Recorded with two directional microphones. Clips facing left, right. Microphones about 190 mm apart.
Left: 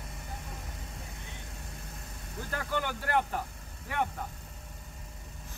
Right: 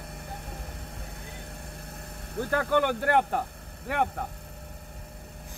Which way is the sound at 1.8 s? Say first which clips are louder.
Right 4 dB; 60° right (ahead or behind).